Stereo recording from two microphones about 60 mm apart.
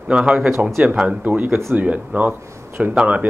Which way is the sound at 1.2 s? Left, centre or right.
Right.